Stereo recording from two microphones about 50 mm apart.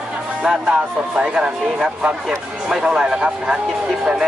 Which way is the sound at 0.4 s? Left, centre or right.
Centre.